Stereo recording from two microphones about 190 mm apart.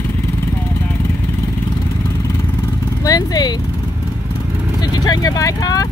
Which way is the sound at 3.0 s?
20° left (ahead or behind).